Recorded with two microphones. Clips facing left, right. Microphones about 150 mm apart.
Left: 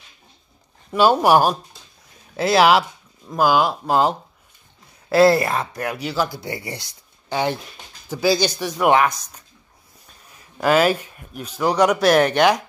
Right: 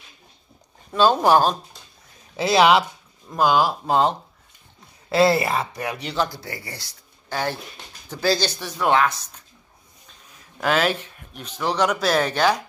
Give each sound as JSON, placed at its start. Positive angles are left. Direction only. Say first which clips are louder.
{"t": 0.9, "sound": "speech", "louder": "left 2 dB", "side_deg": 10}
{"t": 5.1, "sound": "speech", "louder": "left 3 dB", "side_deg": 0}
{"t": 6.4, "sound": "speech", "louder": "left 6 dB", "side_deg": 20}
{"t": 10.6, "sound": "speech", "louder": "left 5 dB", "side_deg": 5}